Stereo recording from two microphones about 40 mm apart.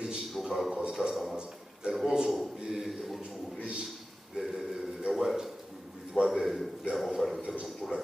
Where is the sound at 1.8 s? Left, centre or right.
Right.